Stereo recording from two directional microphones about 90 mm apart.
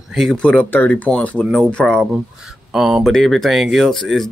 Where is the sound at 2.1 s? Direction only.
5° right (ahead or behind).